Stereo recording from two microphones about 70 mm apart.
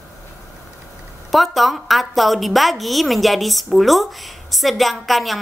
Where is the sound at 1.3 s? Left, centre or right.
Centre.